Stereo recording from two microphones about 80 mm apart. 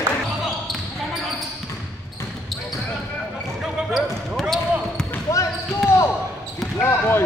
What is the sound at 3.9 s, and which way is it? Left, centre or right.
Basketball bounce, centre.